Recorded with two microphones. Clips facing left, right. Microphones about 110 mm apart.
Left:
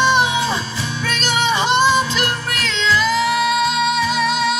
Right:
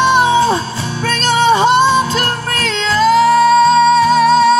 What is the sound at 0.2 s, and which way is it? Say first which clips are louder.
Music: right 7 dB; 40° right (ahead or behind).